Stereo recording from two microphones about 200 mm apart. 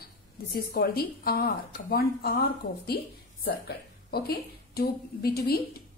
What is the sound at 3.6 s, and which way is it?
A woman's voice, 50° left (ahead or behind).